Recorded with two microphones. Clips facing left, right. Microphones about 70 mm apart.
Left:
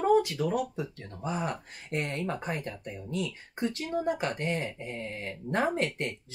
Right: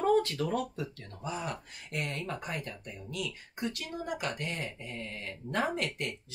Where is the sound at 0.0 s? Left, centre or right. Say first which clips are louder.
Left 3 dB; centre.